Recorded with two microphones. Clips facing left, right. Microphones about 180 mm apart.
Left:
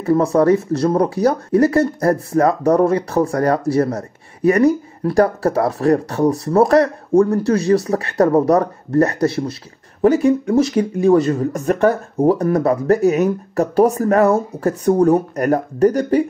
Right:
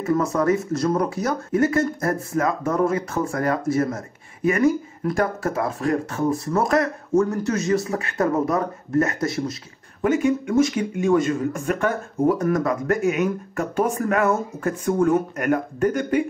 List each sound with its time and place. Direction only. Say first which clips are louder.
0.0 s speech: left 6 dB; 30° left (ahead or behind)